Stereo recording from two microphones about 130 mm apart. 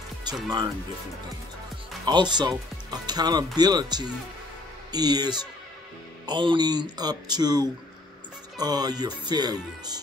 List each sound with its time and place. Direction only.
0.2 s speech: 35° right (ahead or behind)
2.0 s speech: 35° right (ahead or behind)